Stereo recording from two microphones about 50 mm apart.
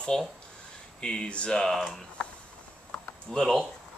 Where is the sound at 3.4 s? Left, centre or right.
Centre.